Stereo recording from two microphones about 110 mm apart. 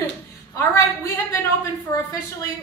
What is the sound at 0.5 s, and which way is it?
A woman's voice, 25° left (ahead or behind).